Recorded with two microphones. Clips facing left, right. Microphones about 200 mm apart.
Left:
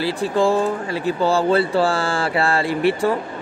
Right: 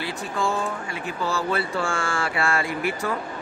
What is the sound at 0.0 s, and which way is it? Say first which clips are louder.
Speech: left 9 dB; 30° left (ahead or behind).